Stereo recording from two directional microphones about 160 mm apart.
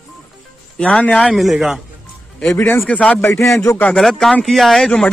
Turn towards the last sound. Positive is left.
turn(degrees=5)  # may be behind; listen again after turning